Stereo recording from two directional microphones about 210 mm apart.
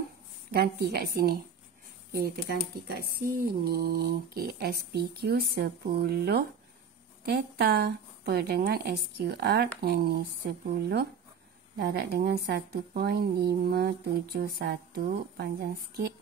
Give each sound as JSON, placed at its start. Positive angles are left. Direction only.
{"t": 0.5, "sound": "speech", "side_deg": -50}
{"t": 11.7, "sound": "speech", "side_deg": -45}